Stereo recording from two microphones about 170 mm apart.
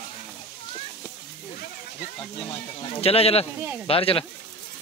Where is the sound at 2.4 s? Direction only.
35° left (ahead or behind).